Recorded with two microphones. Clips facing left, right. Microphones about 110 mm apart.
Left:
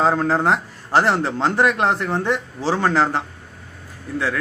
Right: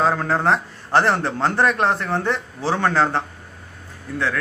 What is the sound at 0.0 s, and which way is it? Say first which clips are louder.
A man's voice: left 1 dB; 25° left (ahead or behind).